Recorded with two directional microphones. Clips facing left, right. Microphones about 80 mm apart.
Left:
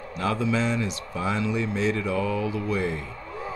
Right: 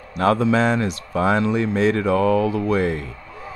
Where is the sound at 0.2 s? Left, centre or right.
Right.